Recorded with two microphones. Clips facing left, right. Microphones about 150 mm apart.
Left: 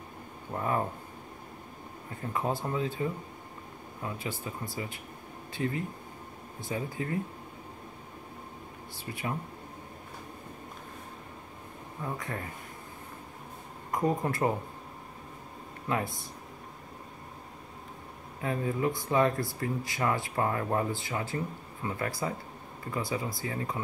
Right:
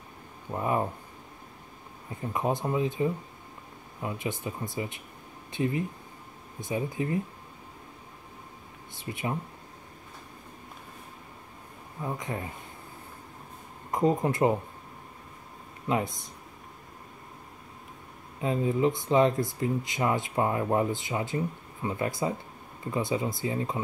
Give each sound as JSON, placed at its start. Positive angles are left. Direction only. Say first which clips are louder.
{"t": 0.5, "sound": "speech", "louder": "right 2 dB", "side_deg": -15}
{"t": 2.3, "sound": "speech", "louder": "right 3 dB", "side_deg": -20}
{"t": 8.9, "sound": "speech", "louder": "right 3 dB", "side_deg": -20}
{"t": 12.0, "sound": "speech", "louder": "right 3 dB", "side_deg": -20}
{"t": 13.9, "sound": "speech", "louder": "right 4 dB", "side_deg": -20}
{"t": 15.9, "sound": "speech", "louder": "right 3 dB", "side_deg": -20}
{"t": 18.4, "sound": "speech", "louder": "right 4 dB", "side_deg": -20}